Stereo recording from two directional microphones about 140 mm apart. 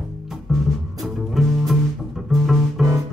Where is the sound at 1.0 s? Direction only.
Centre (ahead or behind).